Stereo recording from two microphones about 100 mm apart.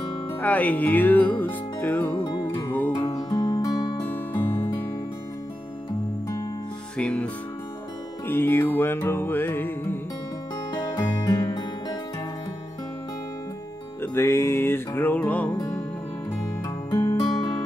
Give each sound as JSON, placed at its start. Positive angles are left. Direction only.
{"t": 0.4, "sound": "music", "side_deg": 15}
{"t": 2.1, "sound": "music", "side_deg": 45}
{"t": 2.7, "sound": "music", "side_deg": 15}
{"t": 3.3, "sound": "music", "side_deg": 45}
{"t": 4.0, "sound": "music", "side_deg": 20}
{"t": 7.0, "sound": "music", "side_deg": 10}
{"t": 8.3, "sound": "music", "side_deg": 20}
{"t": 10.7, "sound": "music", "side_deg": 45}
{"t": 14.0, "sound": "music", "side_deg": 25}
{"t": 17.0, "sound": "music", "side_deg": 45}